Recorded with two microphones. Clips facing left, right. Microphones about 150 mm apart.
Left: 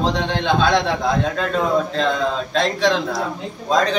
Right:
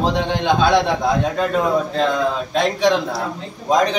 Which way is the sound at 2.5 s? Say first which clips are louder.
Right 2 dB; 10° right (ahead or behind).